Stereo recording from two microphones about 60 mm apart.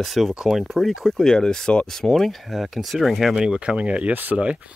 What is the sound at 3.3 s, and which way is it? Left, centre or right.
Speech, centre.